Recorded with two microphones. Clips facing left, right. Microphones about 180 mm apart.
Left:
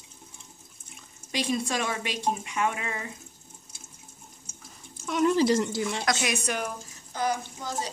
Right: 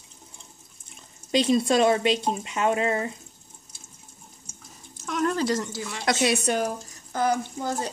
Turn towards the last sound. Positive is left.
turn(degrees=-55)  # may be behind; listen again after turning